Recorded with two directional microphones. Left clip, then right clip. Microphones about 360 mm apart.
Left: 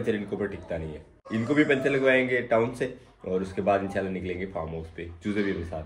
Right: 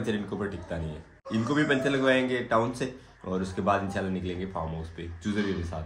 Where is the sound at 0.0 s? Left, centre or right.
Centre.